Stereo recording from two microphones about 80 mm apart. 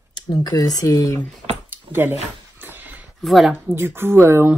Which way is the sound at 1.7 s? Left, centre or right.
Right.